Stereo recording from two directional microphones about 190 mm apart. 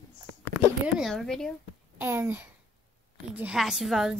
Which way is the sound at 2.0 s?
10° right (ahead or behind).